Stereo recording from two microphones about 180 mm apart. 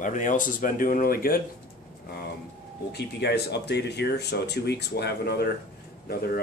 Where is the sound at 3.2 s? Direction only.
65° left (ahead or behind).